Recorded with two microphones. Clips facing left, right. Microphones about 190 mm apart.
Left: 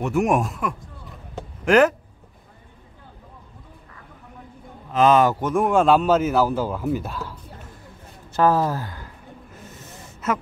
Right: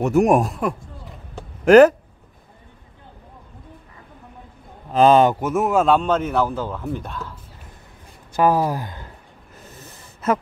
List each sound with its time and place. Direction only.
0.0 s speech: 40° right (ahead or behind)
4.9 s speech: 30° right (ahead or behind)
5.3 s a man's voice: 5° right (ahead or behind)
8.3 s speech: 15° right (ahead or behind)